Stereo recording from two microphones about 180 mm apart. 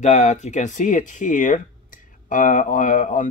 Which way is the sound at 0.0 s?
40° left (ahead or behind).